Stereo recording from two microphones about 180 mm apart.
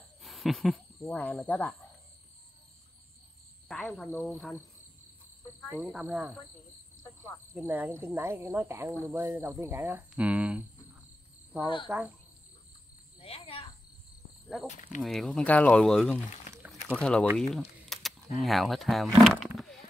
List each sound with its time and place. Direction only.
0.2 s a sound: centre (ahead or behind)
1.0 s speech: 10° left (ahead or behind)
3.6 s speech: 5° left (ahead or behind)
5.8 s speech: 5° right (ahead or behind)
7.5 s speech: 10° right (ahead or behind)
11.9 s speech: 10° right (ahead or behind)
13.2 s cricket: 30° left (ahead or behind)
14.7 s speech: 45° left (ahead or behind)
15.0 s speech: centre (ahead or behind)
17.4 s a sound: centre (ahead or behind)
18.4 s speech: centre (ahead or behind)
19.4 s roaring cats: centre (ahead or behind)